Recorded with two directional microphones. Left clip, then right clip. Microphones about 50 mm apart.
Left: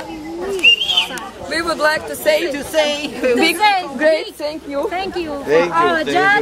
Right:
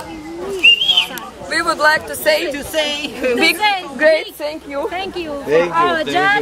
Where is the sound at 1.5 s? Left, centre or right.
Right.